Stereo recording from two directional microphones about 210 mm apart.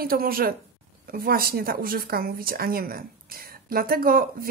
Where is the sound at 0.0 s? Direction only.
45° right (ahead or behind).